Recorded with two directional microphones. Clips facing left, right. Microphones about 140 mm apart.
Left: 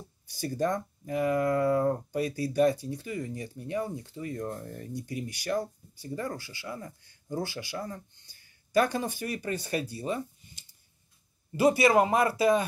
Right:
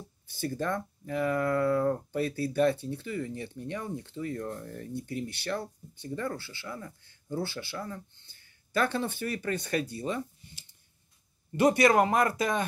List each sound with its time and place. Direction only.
0.3 s speech: 15° left (ahead or behind)
11.8 s speech: 25° left (ahead or behind)